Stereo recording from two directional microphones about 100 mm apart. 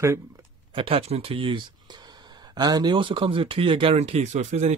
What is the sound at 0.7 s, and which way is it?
Speech, 75° right (ahead or behind).